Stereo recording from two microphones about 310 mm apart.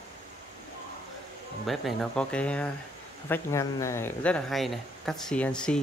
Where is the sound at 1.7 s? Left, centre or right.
Centre.